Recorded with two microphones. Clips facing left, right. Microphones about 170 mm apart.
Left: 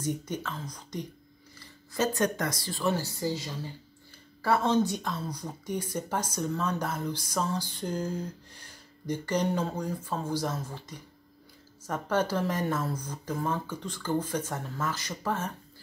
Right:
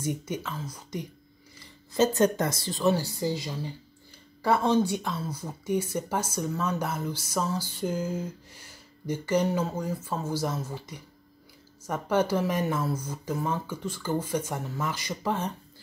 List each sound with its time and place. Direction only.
0.0 s a woman's voice: 10° right (ahead or behind)
1.9 s a woman's voice: 25° right (ahead or behind)